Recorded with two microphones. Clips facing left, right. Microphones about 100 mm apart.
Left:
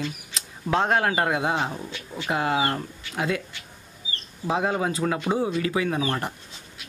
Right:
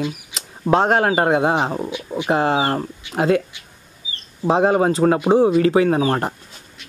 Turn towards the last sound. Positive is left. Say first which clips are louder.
# right 8 dB
turn(degrees=-45)  # may be behind; listen again after turning